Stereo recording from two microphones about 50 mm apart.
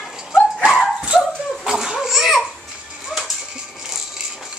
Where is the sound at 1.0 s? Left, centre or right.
Centre.